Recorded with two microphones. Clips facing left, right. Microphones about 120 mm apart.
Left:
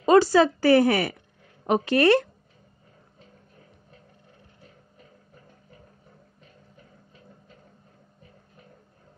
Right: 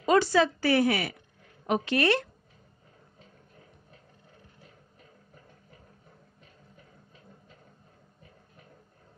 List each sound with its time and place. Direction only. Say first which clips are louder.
0.0 s speech: left 5 dB; 35° left (ahead or behind)